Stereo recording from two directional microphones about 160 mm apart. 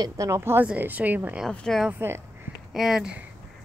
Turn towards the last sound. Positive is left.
turn(degrees=-5)  # may be behind; listen again after turning